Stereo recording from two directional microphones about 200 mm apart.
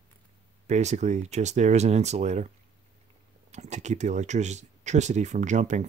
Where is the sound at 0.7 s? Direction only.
35° right (ahead or behind).